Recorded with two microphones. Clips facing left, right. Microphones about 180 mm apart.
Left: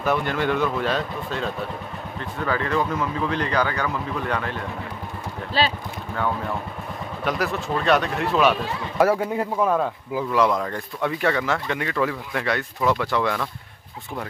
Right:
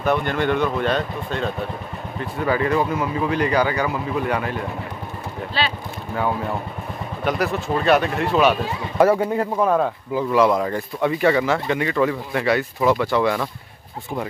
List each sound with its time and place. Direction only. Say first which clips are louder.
0.0 s speech: right 2 dB; 5° left (ahead or behind)
2.1 s speech: right 4 dB; 10° right (ahead or behind)
5.5 s speech: left 2 dB; 40° left (ahead or behind)
7.2 s speech: right 3 dB; centre (ahead or behind)